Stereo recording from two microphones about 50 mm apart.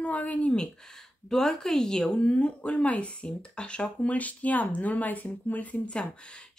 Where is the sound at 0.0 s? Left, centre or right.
Left.